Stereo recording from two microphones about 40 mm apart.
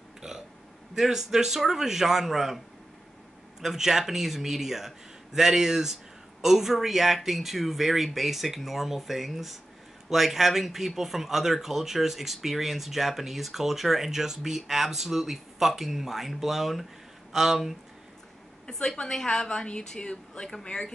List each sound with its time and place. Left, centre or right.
0.2 s burping: centre
0.9 s speech: centre
3.6 s speech: centre
18.7 s a woman's voice: centre